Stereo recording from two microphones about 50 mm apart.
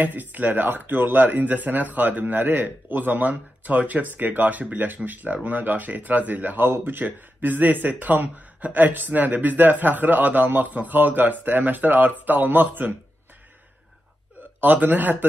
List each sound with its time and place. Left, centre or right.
0.0 s speech: right
14.6 s speech: right